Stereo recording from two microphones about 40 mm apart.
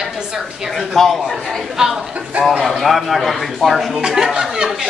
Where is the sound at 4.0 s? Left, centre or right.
Centre.